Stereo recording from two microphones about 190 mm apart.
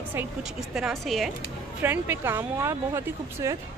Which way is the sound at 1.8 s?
10° right (ahead or behind).